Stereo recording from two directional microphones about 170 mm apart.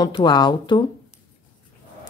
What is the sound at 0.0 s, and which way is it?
Speech, 25° left (ahead or behind).